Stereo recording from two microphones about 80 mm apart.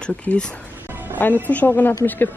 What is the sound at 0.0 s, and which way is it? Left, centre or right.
Speech, centre.